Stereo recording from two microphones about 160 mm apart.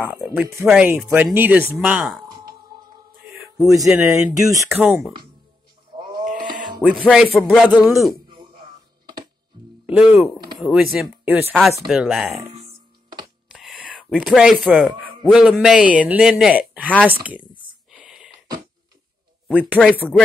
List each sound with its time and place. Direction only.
0.1 s speech: 10° right (ahead or behind)
1.8 s a man's voice: 5° right (ahead or behind)
3.6 s speech: 20° right (ahead or behind)
5.9 s a sound: 30° right (ahead or behind)
6.8 s a man's voice: 5° right (ahead or behind)
9.8 s a man's voice: 5° right (ahead or behind)
13.5 s speech: centre (ahead or behind)
17.9 s a sound: 5° right (ahead or behind)
19.8 s speech: 5° left (ahead or behind)